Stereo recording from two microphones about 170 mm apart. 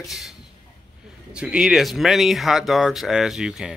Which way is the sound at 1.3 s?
5° right (ahead or behind).